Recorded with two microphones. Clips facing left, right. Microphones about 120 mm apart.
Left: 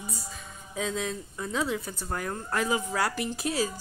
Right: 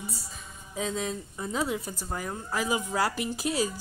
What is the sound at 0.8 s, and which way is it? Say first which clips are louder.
Speech: even; centre (ahead or behind).